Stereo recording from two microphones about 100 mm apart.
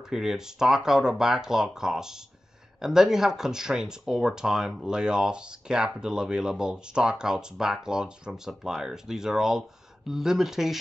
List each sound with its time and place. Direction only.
0.1 s speech: 5° right (ahead or behind)